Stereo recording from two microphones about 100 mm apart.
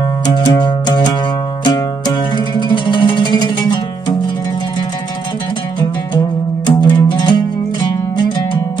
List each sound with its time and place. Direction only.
0.3 s music: 45° left (ahead or behind)
5.8 s music: 45° left (ahead or behind)